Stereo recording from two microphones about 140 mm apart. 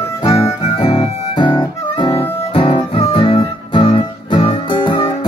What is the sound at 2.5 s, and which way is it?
Music, 40° left (ahead or behind).